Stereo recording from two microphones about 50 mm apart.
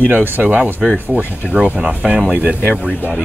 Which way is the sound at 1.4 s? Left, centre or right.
Right.